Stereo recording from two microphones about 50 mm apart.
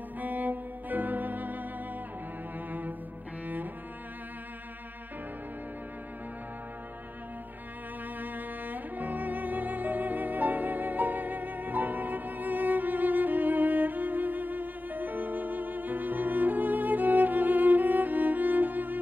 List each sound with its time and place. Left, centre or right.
0.2 s music: right
8.2 s music: right